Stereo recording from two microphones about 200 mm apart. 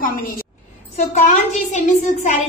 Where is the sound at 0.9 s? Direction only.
35° left (ahead or behind).